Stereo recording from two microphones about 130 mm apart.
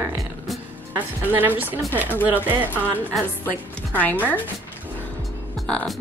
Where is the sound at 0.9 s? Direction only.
15° right (ahead or behind).